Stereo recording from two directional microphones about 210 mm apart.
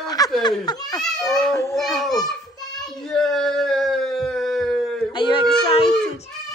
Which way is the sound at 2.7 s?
Centre (ahead or behind).